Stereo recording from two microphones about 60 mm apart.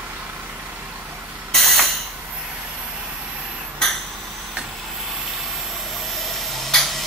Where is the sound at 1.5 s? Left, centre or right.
Centre.